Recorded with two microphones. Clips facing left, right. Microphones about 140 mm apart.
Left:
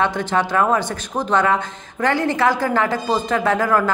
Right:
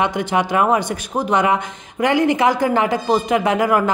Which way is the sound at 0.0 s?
15° right (ahead or behind).